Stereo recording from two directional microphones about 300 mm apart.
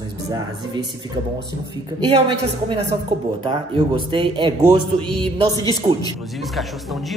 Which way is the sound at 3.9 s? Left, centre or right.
Centre.